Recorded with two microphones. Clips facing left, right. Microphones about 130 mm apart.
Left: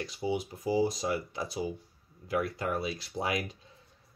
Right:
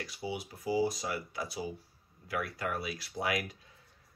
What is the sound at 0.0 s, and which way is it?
Speech, 25° left (ahead or behind).